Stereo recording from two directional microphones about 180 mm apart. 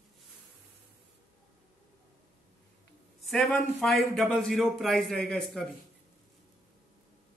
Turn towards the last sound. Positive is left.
turn(degrees=5)  # may be behind; listen again after turning